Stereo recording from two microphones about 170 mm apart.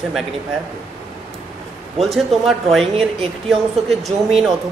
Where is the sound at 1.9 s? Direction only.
Centre (ahead or behind).